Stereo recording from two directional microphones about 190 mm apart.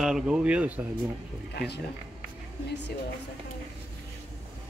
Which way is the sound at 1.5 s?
60° left (ahead or behind).